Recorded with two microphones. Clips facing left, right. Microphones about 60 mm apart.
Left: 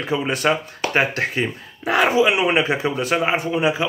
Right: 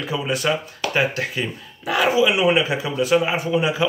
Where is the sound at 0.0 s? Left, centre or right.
Left.